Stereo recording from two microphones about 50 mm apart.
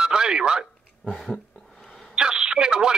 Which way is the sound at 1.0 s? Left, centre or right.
Centre.